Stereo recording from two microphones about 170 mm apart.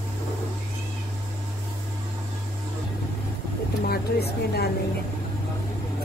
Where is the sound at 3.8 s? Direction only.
65° left (ahead or behind).